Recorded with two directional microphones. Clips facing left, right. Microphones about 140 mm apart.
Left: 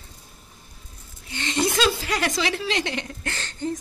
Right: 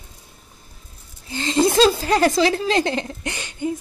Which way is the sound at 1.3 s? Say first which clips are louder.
Right 6 dB; 30° right (ahead or behind).